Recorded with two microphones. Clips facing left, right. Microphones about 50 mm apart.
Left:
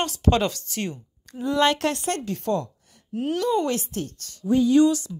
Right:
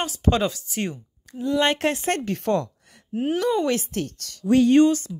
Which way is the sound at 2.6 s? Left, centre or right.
Right.